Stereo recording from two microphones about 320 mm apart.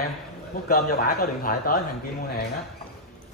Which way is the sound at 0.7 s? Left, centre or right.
Left.